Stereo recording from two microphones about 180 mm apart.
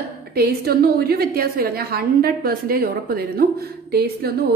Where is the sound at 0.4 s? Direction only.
60° right (ahead or behind).